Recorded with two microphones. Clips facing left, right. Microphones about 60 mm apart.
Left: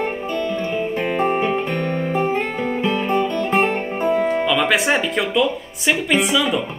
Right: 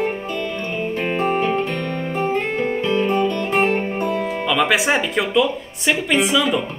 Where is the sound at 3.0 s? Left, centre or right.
Left.